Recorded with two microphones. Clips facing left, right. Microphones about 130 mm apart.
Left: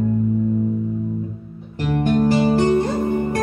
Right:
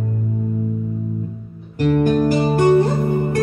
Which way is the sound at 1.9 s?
50° right (ahead or behind).